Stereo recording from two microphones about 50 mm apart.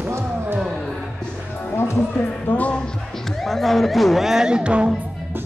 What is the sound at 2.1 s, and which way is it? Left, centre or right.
Music, left.